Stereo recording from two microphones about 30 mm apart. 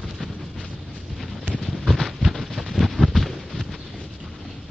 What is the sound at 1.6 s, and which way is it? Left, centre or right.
Horse, centre.